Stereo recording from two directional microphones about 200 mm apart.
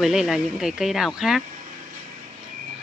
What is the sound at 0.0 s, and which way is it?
Speech, centre (ahead or behind).